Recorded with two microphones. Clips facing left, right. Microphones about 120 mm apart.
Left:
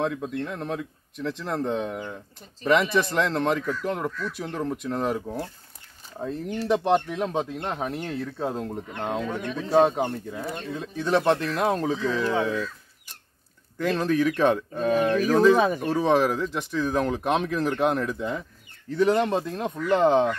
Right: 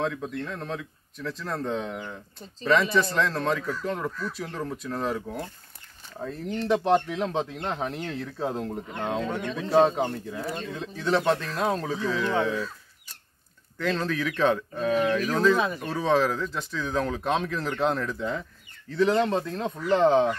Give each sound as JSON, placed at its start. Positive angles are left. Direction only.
{"t": 0.0, "sound": "speech", "side_deg": 15}
{"t": 11.1, "sound": "speech", "side_deg": 15}
{"t": 13.7, "sound": "speech", "side_deg": 15}